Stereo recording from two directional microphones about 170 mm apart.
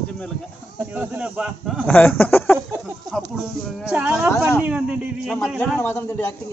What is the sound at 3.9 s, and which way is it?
Speech, 10° right (ahead or behind).